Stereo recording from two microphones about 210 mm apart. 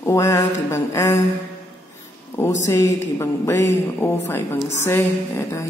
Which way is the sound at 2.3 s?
15° left (ahead or behind).